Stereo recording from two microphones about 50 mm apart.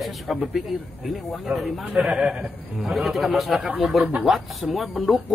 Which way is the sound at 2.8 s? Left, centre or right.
Centre.